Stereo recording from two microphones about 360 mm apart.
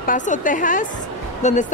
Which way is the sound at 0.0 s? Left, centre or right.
Left.